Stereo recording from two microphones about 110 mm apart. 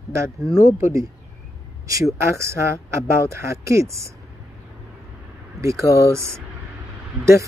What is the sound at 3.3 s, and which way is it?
Speech, 25° right (ahead or behind).